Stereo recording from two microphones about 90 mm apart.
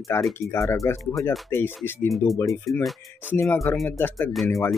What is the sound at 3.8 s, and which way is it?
Speech, 20° left (ahead or behind).